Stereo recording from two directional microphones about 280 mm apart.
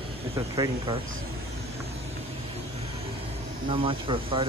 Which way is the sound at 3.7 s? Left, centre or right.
Centre.